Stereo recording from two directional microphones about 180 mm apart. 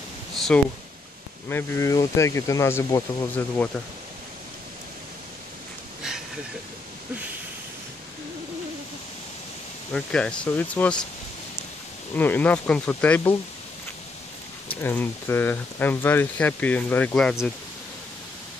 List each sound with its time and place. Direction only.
1.5 s speech: 15° left (ahead or behind)
9.9 s speech: 5° left (ahead or behind)
12.2 s speech: 10° left (ahead or behind)
14.8 s speech: 10° left (ahead or behind)